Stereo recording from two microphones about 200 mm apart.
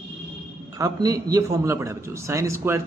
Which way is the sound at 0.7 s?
20° right (ahead or behind).